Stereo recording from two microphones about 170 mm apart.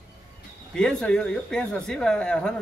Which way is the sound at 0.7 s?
5° left (ahead or behind).